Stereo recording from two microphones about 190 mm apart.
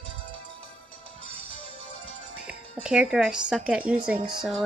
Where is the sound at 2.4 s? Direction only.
5° right (ahead or behind).